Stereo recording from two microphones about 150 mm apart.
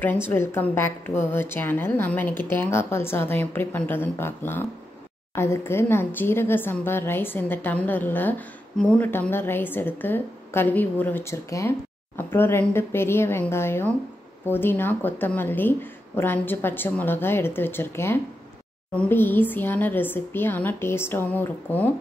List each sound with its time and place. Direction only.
0.0 s speech: 15° left (ahead or behind)